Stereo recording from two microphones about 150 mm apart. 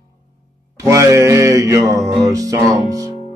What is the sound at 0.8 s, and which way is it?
Music, 20° right (ahead or behind).